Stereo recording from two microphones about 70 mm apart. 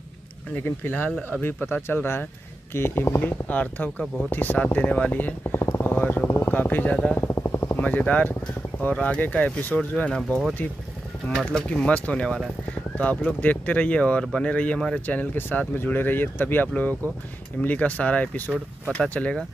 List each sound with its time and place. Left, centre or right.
0.5 s speech: left
3.2 s speech: left
5.6 s vehicle: left
6.2 s vehicle: left
6.5 s speech: left
7.2 s vehicle: left
7.8 s speech: left